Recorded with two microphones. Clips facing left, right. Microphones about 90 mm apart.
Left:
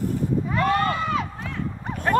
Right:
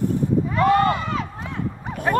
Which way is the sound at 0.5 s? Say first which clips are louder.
Right 5 dB; 20° right (ahead or behind).